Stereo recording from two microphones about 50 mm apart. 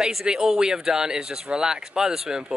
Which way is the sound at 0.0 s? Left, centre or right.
Centre.